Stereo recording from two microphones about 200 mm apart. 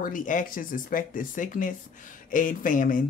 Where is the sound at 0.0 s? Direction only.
40° left (ahead or behind).